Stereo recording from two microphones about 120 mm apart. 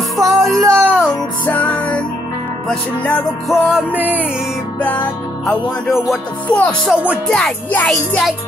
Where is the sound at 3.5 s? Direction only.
5° right (ahead or behind).